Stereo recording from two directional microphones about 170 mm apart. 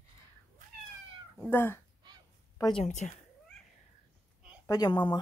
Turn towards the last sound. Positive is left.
turn(degrees=25)  # may be behind; listen again after turning